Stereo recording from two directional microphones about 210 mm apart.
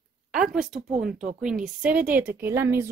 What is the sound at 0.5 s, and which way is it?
A woman's voice, centre (ahead or behind).